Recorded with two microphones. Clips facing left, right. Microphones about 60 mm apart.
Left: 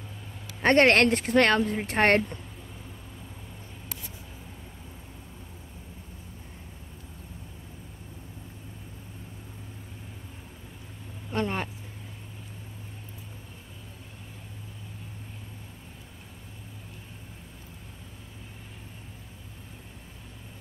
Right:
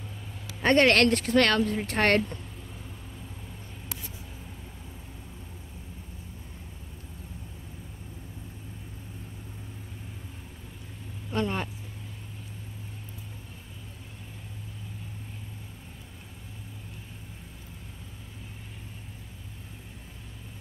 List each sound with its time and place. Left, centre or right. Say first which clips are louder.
0.7 s speech: left 1 dB; left
0.9 s speech: left 1 dB; left
11.2 s vehicle: even; left